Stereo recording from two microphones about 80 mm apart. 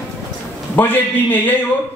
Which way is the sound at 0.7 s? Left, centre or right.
Left.